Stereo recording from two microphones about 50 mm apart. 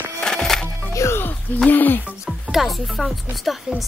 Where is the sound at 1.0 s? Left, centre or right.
Left.